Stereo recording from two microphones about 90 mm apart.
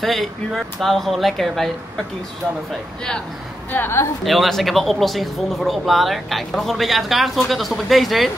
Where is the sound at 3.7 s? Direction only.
25° left (ahead or behind).